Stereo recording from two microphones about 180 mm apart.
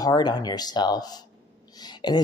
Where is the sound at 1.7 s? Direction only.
25° left (ahead or behind).